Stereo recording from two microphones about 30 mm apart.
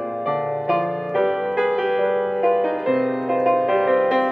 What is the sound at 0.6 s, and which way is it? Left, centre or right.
Music, centre.